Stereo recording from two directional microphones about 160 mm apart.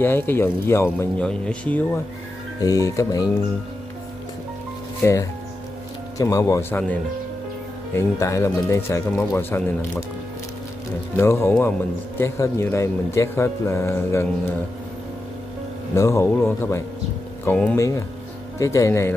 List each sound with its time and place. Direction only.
0.0 s speech: 10° left (ahead or behind)
2.6 s speech: 20° left (ahead or behind)
6.1 s speech: 20° left (ahead or behind)
7.9 s speech: 20° left (ahead or behind)
11.1 s speech: 15° left (ahead or behind)
15.9 s speech: 20° left (ahead or behind)